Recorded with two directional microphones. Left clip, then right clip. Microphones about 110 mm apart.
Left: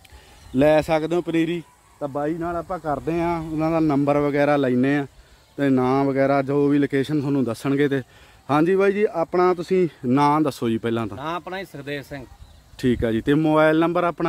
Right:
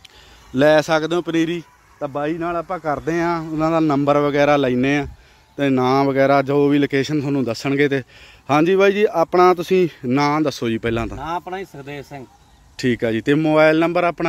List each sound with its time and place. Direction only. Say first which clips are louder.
0.6 s speech: right 3 dB; centre (ahead or behind)
2.0 s a man's voice: right 2 dB; 20° right (ahead or behind)
3.1 s speech: right 3 dB; 5° right (ahead or behind)
10.0 s speech: right 1 dB; 15° left (ahead or behind)
10.7 s speech: right 2 dB; centre (ahead or behind)
11.2 s speech: right 3 dB; 30° left (ahead or behind)
12.7 s speech: right 2 dB; centre (ahead or behind)